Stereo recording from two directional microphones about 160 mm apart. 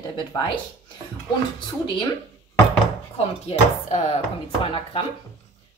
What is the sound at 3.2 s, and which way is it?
A woman's voice, 40° left (ahead or behind).